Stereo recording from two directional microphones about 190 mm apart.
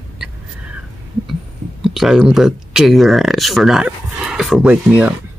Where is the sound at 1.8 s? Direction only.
Centre (ahead or behind).